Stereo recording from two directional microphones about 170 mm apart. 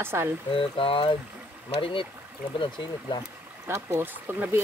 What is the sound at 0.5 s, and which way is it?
Speech, 30° left (ahead or behind).